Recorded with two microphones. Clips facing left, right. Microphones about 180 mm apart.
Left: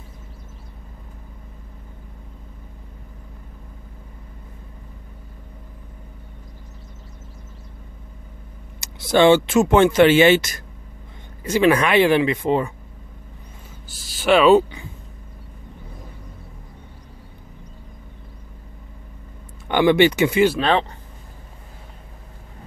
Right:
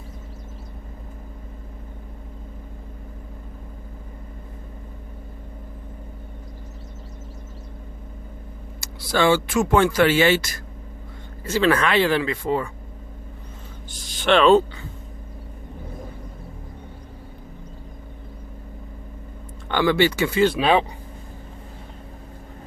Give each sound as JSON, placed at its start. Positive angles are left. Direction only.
{"t": 8.8, "sound": "speech", "side_deg": 20}
{"t": 13.8, "sound": "speech", "side_deg": 5}
{"t": 19.7, "sound": "speech", "side_deg": 20}
{"t": 20.5, "sound": "speech", "side_deg": -10}